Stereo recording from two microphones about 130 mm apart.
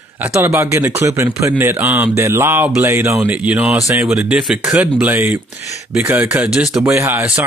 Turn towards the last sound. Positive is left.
turn(degrees=-20)  # may be behind; listen again after turning